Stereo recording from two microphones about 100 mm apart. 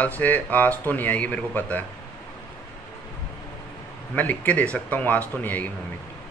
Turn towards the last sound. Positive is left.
turn(degrees=15)  # may be behind; listen again after turning